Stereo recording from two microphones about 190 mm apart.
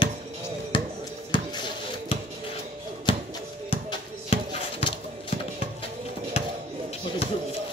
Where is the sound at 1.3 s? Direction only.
25° left (ahead or behind).